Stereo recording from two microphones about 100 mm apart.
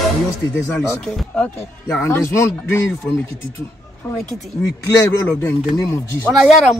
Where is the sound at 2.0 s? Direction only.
25° left (ahead or behind).